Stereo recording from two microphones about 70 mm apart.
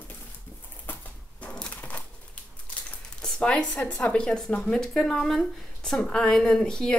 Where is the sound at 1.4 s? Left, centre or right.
Centre.